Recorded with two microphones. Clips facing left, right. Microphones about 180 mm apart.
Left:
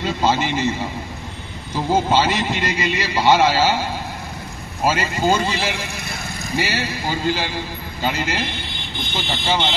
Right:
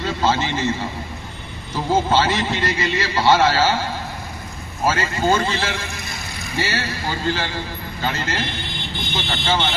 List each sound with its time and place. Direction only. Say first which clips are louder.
0.0 s a man's voice: left 1 dB; 15° left (ahead or behind)
1.9 s a man's voice: even; 15° left (ahead or behind)